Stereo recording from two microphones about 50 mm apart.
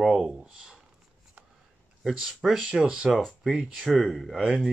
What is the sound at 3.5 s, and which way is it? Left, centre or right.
Speech, centre.